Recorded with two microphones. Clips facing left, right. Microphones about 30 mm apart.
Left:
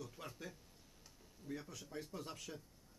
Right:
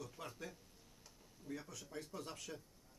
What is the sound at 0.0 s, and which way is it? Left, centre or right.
Music, centre.